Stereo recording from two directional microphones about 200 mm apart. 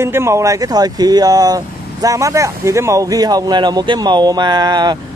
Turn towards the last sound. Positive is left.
turn(degrees=-20)  # may be behind; listen again after turning